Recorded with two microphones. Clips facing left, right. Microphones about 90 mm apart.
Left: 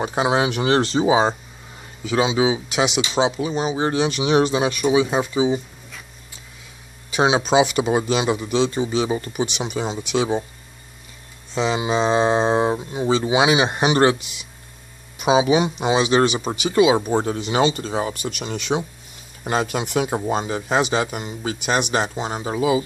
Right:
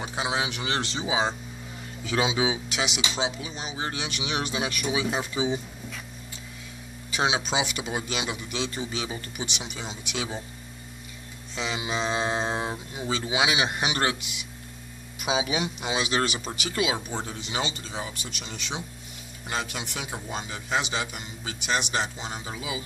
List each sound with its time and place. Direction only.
0.0 s a man's voice: 50° left (ahead or behind)
2.3 s speech: 5° left (ahead or behind)
2.8 s speech: 55° left (ahead or behind); by 5.2 s 30° left (ahead or behind)
5.2 s speech: 20° left (ahead or behind)
7.4 s speech: 50° left (ahead or behind); by 9.3 s 30° left (ahead or behind)
9.4 s a man's voice: 50° left (ahead or behind)
11.5 s speech: 35° left (ahead or behind)
17.1 s speech: 55° left (ahead or behind)
19.4 s a man's voice: 45° left (ahead or behind)